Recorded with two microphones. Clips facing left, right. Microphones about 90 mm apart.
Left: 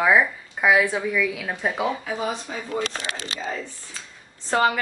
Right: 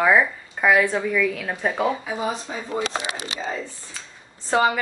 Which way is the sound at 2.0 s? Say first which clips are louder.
Right 1 dB; 15° right (ahead or behind).